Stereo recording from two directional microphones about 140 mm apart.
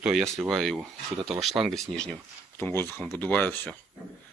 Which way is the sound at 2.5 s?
15° left (ahead or behind).